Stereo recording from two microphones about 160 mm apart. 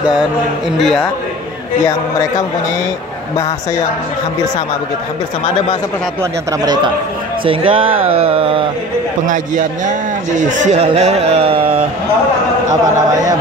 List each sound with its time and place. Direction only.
0.7 s a man's voice: centre (ahead or behind)
1.9 s a man's voice: 20° left (ahead or behind)
6.6 s speech: 25° right (ahead or behind)
9.2 s a man's voice: 55° right (ahead or behind); by 11.8 s 35° right (ahead or behind)